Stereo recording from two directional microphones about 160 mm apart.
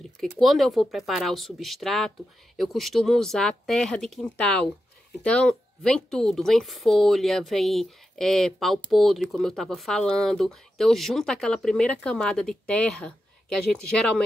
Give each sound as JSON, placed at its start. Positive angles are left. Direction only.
{"t": 0.2, "sound": "speech", "side_deg": 0}